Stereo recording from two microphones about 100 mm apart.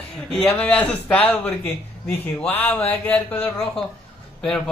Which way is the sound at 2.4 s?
20° left (ahead or behind).